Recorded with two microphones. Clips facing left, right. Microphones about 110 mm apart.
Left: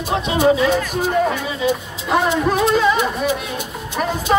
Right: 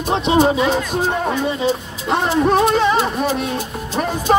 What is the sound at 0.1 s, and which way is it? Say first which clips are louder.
Speech: right 1 dB; 25° right (ahead or behind).